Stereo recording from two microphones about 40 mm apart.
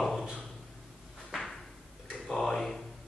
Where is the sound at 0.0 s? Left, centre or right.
Centre.